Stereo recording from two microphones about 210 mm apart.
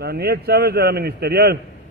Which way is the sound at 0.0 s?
50° right (ahead or behind).